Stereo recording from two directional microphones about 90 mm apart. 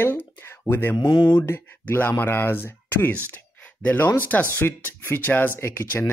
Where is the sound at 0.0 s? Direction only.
20° left (ahead or behind).